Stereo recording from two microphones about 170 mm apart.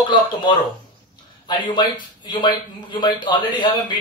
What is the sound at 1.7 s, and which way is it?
Speech, 25° left (ahead or behind).